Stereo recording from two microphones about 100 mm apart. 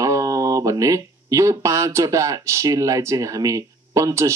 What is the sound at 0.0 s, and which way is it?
Speech, 35° right (ahead or behind).